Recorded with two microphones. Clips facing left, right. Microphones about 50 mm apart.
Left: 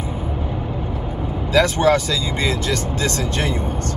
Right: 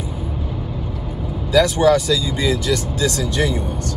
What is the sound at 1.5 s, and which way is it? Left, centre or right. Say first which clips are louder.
Speech: right 2 dB; left.